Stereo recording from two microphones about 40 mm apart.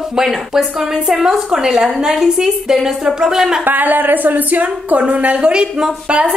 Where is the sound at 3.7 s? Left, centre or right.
Right.